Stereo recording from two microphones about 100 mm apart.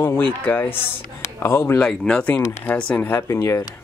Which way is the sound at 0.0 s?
20° left (ahead or behind).